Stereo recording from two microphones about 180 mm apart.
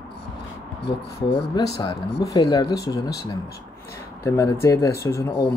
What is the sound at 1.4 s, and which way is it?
Speech, 25° left (ahead or behind).